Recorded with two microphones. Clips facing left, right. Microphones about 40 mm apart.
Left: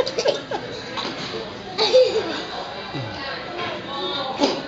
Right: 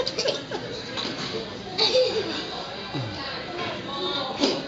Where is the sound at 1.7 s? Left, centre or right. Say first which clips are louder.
Left 6 dB; centre.